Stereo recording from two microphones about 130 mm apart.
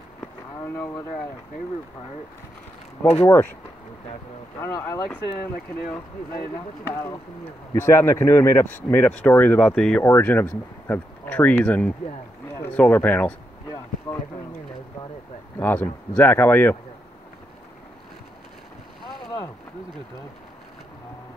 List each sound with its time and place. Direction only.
3.0 s speech: 5° left (ahead or behind)
4.6 s speech: 20° left (ahead or behind)
7.7 s speech: 20° left (ahead or behind); by 10.0 s 5° left (ahead or behind)
10.0 s speech: 15° left (ahead or behind)
15.6 s speech: 15° left (ahead or behind)